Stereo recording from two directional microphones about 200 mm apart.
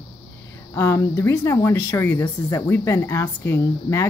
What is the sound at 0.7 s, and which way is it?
Speech, 15° left (ahead or behind).